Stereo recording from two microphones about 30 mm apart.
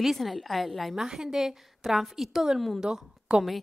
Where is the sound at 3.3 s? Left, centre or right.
Right.